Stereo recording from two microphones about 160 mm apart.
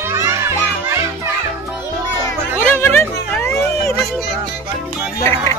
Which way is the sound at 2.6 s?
15° left (ahead or behind).